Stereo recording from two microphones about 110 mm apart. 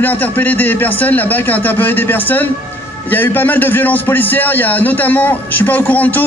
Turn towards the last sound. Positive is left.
turn(degrees=15)  # may be behind; listen again after turning